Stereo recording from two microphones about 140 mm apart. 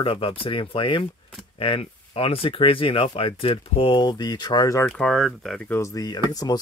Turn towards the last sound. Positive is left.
turn(degrees=30)  # may be behind; listen again after turning